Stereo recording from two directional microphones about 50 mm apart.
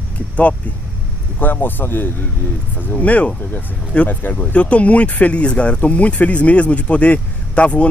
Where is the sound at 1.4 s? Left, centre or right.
Left.